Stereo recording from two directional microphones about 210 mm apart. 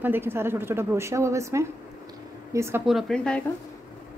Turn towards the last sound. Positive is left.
turn(degrees=5)  # may be behind; listen again after turning